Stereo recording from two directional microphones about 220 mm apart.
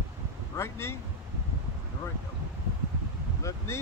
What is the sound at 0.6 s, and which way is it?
Speech, 10° left (ahead or behind).